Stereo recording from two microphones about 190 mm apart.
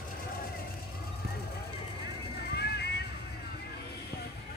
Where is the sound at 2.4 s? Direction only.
60° left (ahead or behind).